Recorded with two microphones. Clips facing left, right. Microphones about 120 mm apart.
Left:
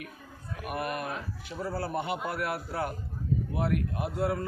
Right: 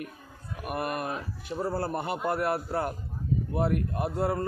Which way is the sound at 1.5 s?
45° right (ahead or behind).